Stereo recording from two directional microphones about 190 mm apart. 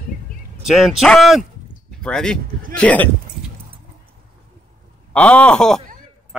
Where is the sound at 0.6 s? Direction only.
Centre (ahead or behind).